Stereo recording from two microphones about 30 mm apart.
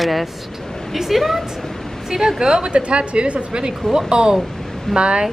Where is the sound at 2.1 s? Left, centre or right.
Centre.